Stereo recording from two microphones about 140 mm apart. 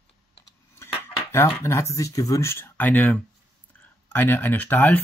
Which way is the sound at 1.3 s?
20° left (ahead or behind).